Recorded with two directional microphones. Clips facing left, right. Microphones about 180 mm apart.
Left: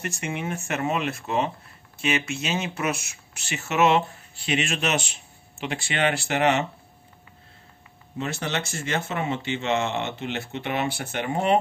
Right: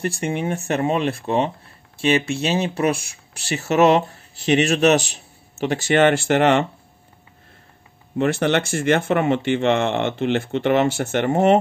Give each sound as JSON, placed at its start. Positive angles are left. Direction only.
{"t": 0.0, "sound": "speech", "side_deg": -35}
{"t": 8.2, "sound": "speech", "side_deg": -60}